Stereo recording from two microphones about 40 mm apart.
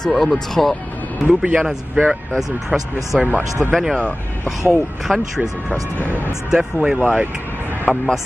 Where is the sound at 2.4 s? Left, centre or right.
Centre.